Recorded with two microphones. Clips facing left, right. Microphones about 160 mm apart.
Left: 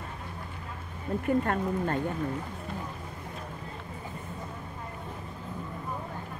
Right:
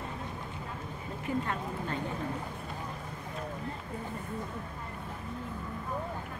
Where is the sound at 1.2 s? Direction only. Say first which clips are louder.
Left 6 dB; 50° left (ahead or behind).